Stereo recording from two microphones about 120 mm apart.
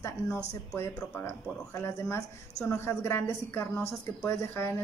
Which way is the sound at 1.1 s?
20° left (ahead or behind).